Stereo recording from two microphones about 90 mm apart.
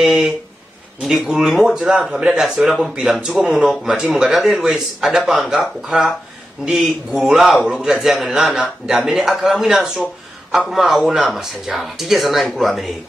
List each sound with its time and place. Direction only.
0.0 s speech: centre (ahead or behind)